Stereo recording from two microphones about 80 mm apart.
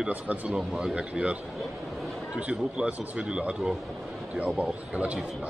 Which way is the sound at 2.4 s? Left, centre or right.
Centre.